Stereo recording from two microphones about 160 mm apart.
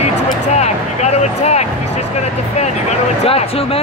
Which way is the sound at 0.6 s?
45° left (ahead or behind).